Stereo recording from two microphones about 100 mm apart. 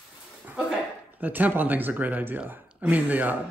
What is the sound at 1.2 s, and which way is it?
Speech, 15° right (ahead or behind).